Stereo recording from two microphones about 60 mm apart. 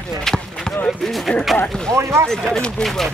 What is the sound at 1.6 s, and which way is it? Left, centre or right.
Speech, centre.